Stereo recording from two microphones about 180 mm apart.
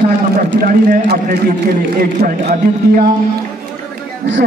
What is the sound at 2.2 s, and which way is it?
Speech, 60° right (ahead or behind).